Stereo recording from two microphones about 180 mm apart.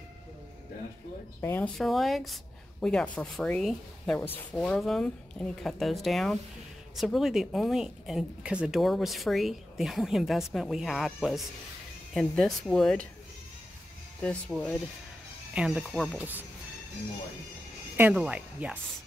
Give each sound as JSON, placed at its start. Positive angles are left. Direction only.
{"t": 1.4, "sound": "speech", "side_deg": 10}
{"t": 1.8, "sound": "speech", "side_deg": 0}
{"t": 14.2, "sound": "speech", "side_deg": 5}
{"t": 17.9, "sound": "speech", "side_deg": -5}